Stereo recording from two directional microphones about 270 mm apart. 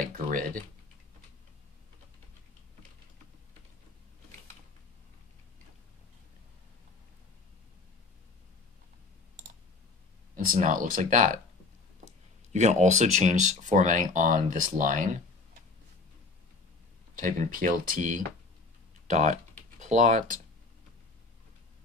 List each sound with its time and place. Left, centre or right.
10.3 s speech: right
12.5 s speech: right
17.2 s speech: right
19.0 s computer keyboard: right